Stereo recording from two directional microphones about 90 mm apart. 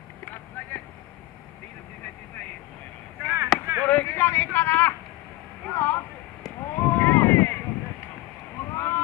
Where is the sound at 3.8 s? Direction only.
15° left (ahead or behind).